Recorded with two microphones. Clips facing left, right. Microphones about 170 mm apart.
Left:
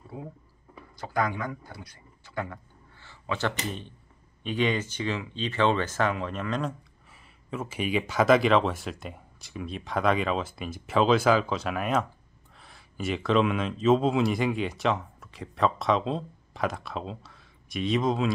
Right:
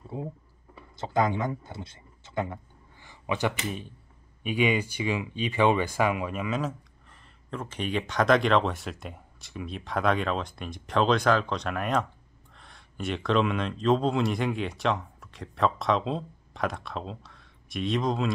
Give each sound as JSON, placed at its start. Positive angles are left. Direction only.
{"t": 0.1, "sound": "speech", "side_deg": -25}
{"t": 7.1, "sound": "speech", "side_deg": 5}